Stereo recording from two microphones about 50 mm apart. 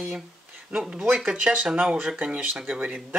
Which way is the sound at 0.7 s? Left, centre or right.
Centre.